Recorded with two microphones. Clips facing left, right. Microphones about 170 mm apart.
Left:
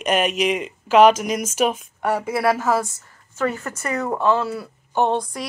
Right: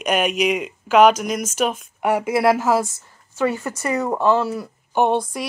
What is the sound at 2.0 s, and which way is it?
A woman's voice, 15° right (ahead or behind).